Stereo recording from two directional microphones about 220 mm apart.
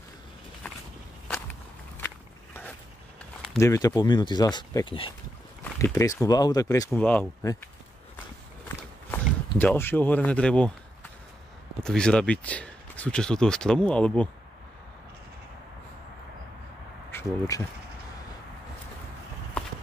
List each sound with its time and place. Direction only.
2.0 s walk: 10° left (ahead or behind)
3.4 s speech: 15° left (ahead or behind)
5.6 s speech: 10° left (ahead or behind)
9.1 s speech: 10° left (ahead or behind)
11.8 s speech: 5° left (ahead or behind)
17.1 s speech: 10° left (ahead or behind)